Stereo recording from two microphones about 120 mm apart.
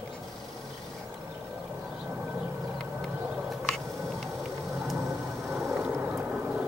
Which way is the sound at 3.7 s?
Centre (ahead or behind).